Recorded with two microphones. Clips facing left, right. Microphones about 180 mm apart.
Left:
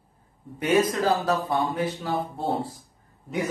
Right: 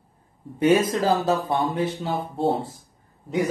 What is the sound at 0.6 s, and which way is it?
Speech, 30° right (ahead or behind).